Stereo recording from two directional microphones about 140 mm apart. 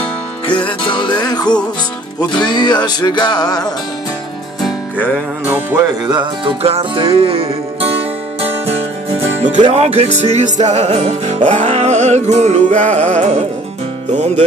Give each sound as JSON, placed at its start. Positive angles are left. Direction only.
{"t": 0.5, "sound": "music", "side_deg": 35}
{"t": 5.0, "sound": "music", "side_deg": -15}
{"t": 6.0, "sound": "music", "side_deg": -35}
{"t": 9.4, "sound": "music", "side_deg": -60}